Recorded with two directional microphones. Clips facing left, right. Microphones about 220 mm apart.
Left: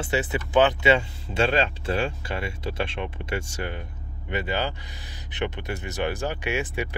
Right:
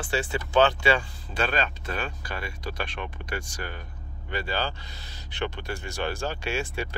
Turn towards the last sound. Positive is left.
turn(degrees=15)  # may be behind; listen again after turning